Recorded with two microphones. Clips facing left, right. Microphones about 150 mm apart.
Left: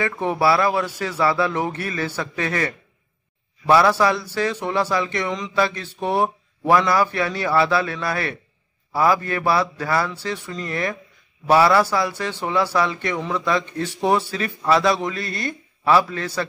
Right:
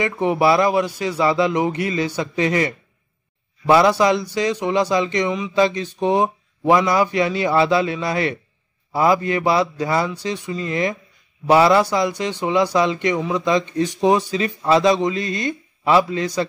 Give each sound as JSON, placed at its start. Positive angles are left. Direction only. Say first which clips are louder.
{"t": 0.0, "sound": "a man's voice", "louder": "right 3 dB", "side_deg": -20}